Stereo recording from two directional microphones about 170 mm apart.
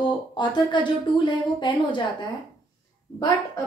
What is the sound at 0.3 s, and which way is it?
A woman's voice, 25° left (ahead or behind).